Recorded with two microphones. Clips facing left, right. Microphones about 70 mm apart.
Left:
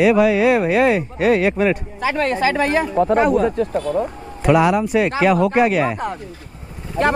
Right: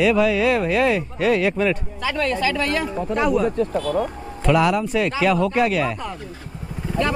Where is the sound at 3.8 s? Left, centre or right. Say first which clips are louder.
Left 1 dB; left.